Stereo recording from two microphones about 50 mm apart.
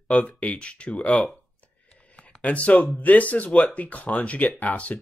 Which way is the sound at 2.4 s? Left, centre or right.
Left.